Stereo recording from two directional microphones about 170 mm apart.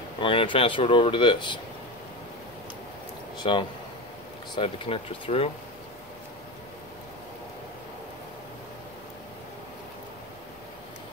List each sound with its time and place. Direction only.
0.2 s speech: 30° left (ahead or behind)
3.3 s speech: 30° left (ahead or behind)